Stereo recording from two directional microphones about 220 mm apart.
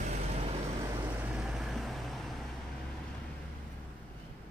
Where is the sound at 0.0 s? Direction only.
30° right (ahead or behind).